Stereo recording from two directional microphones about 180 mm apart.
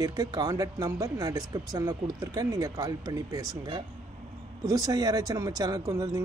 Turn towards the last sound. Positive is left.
turn(degrees=-20)  # may be behind; listen again after turning